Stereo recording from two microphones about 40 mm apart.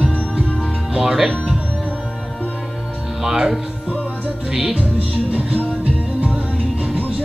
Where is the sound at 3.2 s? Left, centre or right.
Centre.